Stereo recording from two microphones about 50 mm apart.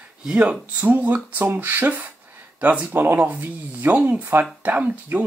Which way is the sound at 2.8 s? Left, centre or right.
Right.